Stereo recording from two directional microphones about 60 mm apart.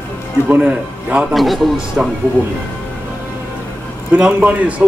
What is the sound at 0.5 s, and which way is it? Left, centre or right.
Speech, right.